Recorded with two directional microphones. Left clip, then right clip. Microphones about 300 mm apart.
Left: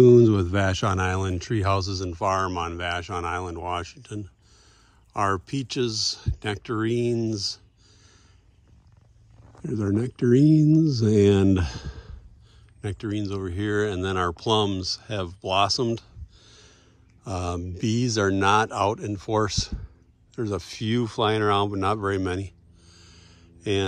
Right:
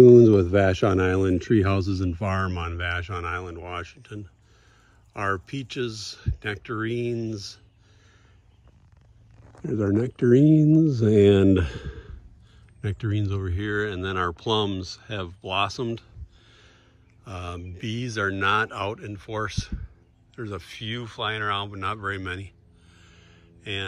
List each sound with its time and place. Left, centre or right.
0.0 s speech: centre
9.7 s speech: centre